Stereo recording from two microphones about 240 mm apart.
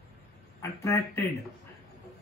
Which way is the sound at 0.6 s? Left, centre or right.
Centre.